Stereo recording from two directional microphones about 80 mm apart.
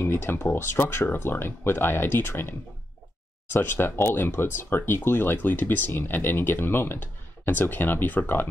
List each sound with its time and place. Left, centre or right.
0.0 s speech: left